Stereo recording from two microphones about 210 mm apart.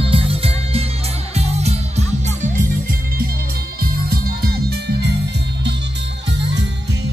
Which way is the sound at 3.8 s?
50° right (ahead or behind).